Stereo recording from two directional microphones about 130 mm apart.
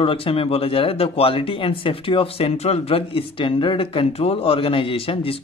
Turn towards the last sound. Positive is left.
turn(degrees=45)  # may be behind; listen again after turning